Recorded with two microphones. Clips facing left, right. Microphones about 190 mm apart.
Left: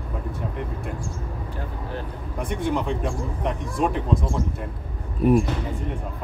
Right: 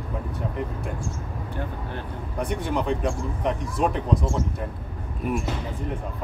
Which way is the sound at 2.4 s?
Centre (ahead or behind).